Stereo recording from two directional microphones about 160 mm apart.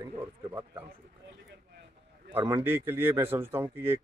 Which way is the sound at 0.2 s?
20° right (ahead or behind).